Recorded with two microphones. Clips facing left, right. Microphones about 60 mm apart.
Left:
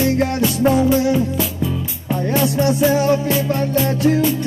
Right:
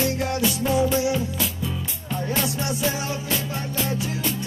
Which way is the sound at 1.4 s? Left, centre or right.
Centre.